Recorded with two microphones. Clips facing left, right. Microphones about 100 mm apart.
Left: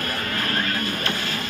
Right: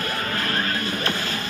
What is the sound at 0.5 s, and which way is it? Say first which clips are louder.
Music: even; 35° right (ahead or behind).